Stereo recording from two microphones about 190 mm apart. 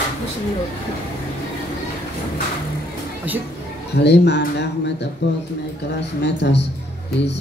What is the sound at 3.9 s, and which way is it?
A man's voice, 60° left (ahead or behind).